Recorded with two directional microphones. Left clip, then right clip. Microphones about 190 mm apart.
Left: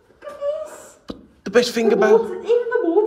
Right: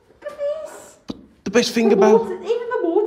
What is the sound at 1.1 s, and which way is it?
Speech, 30° right (ahead or behind).